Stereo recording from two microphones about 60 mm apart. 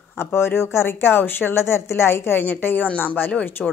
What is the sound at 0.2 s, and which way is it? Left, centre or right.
Speech, left.